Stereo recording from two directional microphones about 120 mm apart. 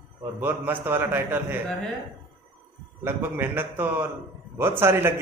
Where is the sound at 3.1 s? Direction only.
15° right (ahead or behind).